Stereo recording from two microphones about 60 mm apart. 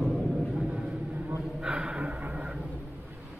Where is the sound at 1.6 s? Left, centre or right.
Centre.